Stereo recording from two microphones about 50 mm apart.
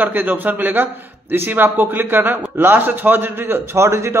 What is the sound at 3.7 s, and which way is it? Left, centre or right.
Speech, right.